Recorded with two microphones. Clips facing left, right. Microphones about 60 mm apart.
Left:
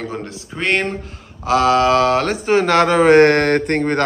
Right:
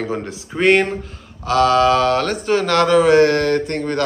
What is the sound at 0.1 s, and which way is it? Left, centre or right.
Speech, right.